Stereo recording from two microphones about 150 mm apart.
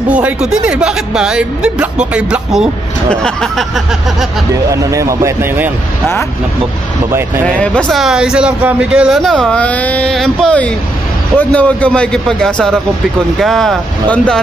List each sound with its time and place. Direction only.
0.1 s a man's voice: 5° right (ahead or behind)
3.1 s a man's voice: 5° left (ahead or behind)
4.6 s speech: 20° right (ahead or behind)
7.1 s speech: 15° right (ahead or behind)
7.4 s a man's voice: 5° left (ahead or behind)